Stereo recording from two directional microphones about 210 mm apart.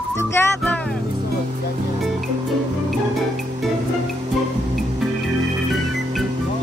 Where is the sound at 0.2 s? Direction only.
10° left (ahead or behind).